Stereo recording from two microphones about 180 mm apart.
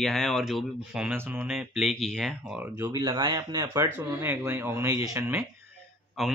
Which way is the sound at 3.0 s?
25° right (ahead or behind).